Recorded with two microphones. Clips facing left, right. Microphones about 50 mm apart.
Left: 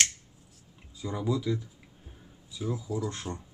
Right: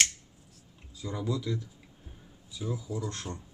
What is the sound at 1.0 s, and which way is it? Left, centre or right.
Speech, centre.